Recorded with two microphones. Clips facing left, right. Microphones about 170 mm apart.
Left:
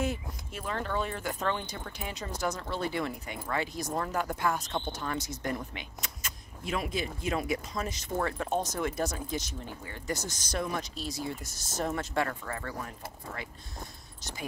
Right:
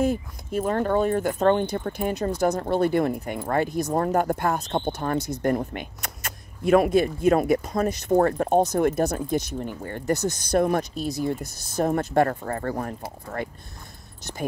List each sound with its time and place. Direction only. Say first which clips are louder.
0.0 s speech: right 9 dB; 45° right (ahead or behind)